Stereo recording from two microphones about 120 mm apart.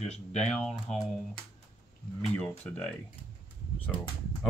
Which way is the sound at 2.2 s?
5° left (ahead or behind).